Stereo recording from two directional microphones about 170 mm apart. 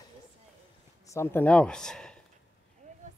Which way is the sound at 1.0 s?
15° left (ahead or behind).